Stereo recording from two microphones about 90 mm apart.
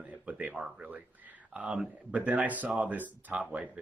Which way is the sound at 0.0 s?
15° right (ahead or behind).